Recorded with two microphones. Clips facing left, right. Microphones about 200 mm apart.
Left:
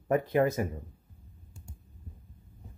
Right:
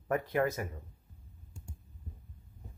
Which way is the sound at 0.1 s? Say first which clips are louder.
Left 5 dB; 25° left (ahead or behind).